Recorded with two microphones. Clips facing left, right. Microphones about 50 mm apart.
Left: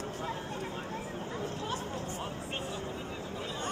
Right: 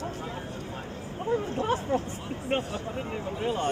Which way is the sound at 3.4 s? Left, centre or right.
Right.